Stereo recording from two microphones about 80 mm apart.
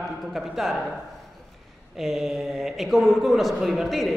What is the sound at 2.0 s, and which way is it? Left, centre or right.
A man's voice, centre.